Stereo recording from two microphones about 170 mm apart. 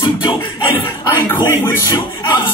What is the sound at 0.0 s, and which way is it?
Music, 30° left (ahead or behind).